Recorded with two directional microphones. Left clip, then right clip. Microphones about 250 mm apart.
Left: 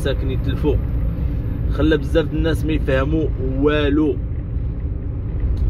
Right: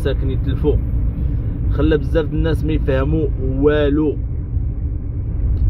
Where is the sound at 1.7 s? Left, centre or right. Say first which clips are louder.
Even; centre.